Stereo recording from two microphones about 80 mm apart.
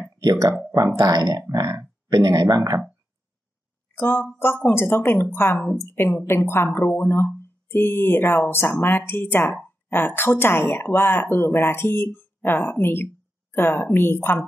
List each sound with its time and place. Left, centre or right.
0.2 s speech: right
3.9 s speech: left